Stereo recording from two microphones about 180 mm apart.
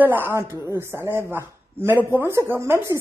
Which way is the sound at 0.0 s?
10° right (ahead or behind).